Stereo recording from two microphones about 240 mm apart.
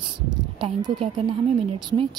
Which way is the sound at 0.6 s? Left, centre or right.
Right.